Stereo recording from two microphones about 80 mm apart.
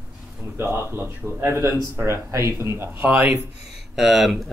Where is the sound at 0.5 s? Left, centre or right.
Right.